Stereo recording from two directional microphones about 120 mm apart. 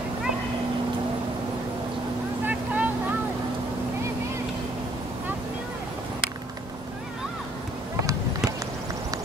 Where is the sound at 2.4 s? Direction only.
15° right (ahead or behind).